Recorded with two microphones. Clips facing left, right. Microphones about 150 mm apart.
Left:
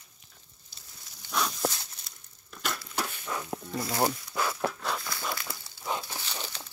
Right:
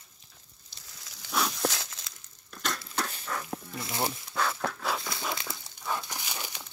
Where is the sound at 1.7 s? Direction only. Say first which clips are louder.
Right 5 dB; 90° right.